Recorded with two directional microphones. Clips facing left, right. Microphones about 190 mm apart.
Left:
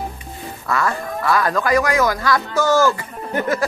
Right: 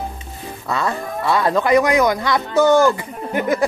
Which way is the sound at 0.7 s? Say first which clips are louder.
Left 1 dB; 20° right (ahead or behind).